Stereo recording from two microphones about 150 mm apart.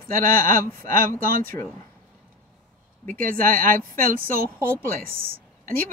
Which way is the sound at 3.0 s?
65° right (ahead or behind).